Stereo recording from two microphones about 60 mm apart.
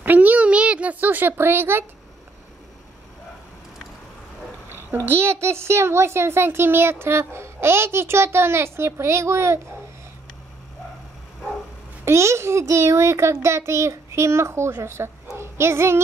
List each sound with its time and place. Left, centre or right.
0.0 s a sound: right
5.0 s a child's voice: right
12.0 s a child's voice: right
15.3 s child singing: right